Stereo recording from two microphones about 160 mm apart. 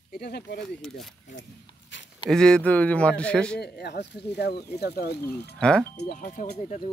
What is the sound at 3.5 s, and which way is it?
Speech, 90° left.